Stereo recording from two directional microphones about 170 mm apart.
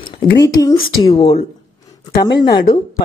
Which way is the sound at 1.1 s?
35° left (ahead or behind).